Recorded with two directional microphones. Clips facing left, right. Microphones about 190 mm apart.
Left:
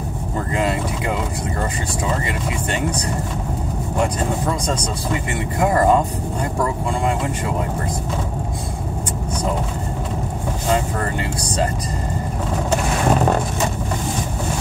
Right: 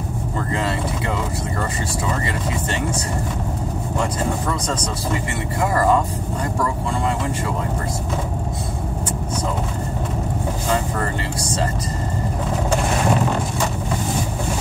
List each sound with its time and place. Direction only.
5.6 s speech: 25° left (ahead or behind)